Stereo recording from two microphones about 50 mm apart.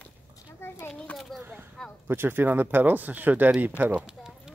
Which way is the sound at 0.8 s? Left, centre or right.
Left.